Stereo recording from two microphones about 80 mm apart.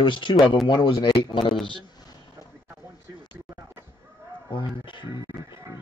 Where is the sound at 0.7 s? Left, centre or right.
Left.